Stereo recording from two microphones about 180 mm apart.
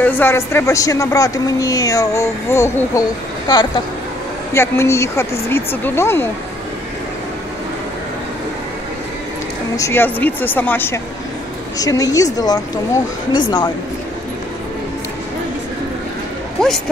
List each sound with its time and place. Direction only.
0.0 s speech: 10° left (ahead or behind)
9.8 s speech: 15° left (ahead or behind)